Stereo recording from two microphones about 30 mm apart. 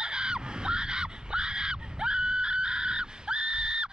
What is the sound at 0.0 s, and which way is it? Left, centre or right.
Fowl, right.